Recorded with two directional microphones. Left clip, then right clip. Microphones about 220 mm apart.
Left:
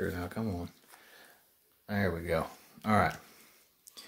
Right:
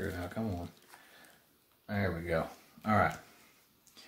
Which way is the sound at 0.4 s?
45° left (ahead or behind).